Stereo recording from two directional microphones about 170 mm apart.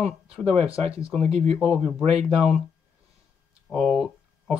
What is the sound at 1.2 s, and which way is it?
Speech, 35° right (ahead or behind).